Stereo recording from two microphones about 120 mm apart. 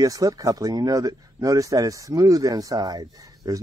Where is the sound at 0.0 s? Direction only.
30° right (ahead or behind).